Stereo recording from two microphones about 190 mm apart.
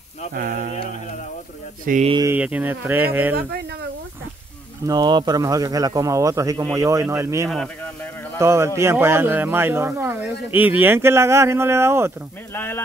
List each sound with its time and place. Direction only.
0.3 s a sound: 50° right (ahead or behind)
1.9 s speech: 40° right (ahead or behind)
2.1 s speech: 10° right (ahead or behind)
4.8 s speech: 20° right (ahead or behind)
7.4 s a sound: centre (ahead or behind)
8.4 s speech: 15° right (ahead or behind)
12.5 s speech: 10° left (ahead or behind)